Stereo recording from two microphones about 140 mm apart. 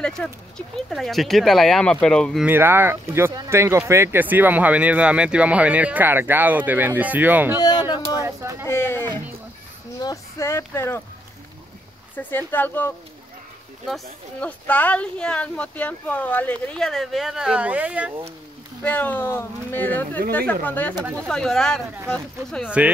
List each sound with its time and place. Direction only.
0.0 s speech: 5° left (ahead or behind)
2.4 s speech: 15° right (ahead or behind)
7.5 s a sound: 30° left (ahead or behind)
8.2 s speech: 20° right (ahead or behind)
8.6 s speech: 15° left (ahead or behind)
12.2 s speech: 15° left (ahead or behind)
13.8 s speech: centre (ahead or behind)
18.8 s speech: 10° left (ahead or behind)
21.0 s speech: 15° right (ahead or behind)
21.3 s speech: 5° left (ahead or behind)